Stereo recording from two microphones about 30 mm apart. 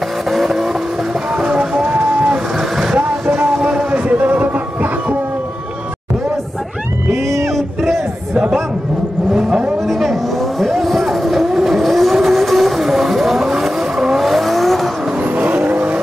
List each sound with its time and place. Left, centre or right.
0.3 s vehicle: centre
1.3 s music: right
1.9 s a sound: right
2.3 s vehicle: right
3.6 s a sound: right
4.2 s music: right
10.6 s vehicle: centre
15.3 s vehicle: right